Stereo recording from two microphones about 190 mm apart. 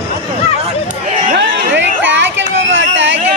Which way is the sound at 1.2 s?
45° right (ahead or behind).